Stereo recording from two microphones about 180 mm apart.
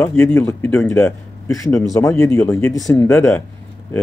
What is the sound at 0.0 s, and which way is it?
Speech, 10° left (ahead or behind).